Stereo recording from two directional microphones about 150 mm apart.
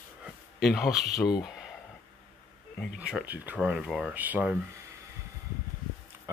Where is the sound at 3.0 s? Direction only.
10° right (ahead or behind).